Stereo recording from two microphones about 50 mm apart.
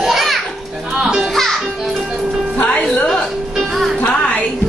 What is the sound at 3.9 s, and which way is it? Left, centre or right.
Music, left.